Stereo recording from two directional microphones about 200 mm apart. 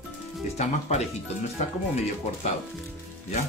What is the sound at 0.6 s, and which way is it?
Speech, 35° left (ahead or behind).